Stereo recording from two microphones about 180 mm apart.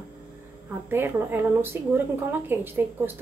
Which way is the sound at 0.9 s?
10° right (ahead or behind).